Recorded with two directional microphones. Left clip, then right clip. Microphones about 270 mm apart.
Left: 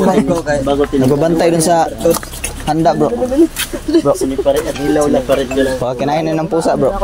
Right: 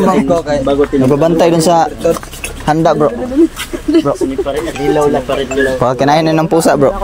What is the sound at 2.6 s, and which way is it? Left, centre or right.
Speech, right.